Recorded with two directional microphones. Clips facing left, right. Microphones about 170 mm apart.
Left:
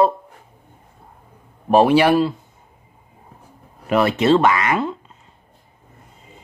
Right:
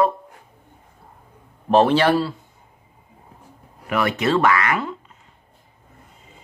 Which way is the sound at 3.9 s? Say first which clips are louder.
Left 5 dB; 25° left (ahead or behind).